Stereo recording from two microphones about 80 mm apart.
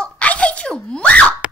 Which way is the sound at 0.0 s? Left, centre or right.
Centre.